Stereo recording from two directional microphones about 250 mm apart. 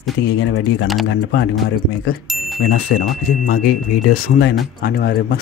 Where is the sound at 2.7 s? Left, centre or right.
Left.